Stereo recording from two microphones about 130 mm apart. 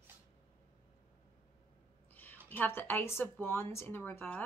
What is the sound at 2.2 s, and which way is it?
A woman's voice, 15° left (ahead or behind).